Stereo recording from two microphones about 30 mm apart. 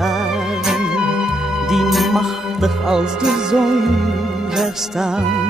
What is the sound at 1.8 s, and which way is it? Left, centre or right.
Music, centre.